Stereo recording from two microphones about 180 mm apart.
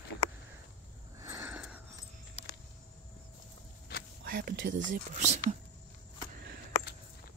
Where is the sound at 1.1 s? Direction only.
15° right (ahead or behind).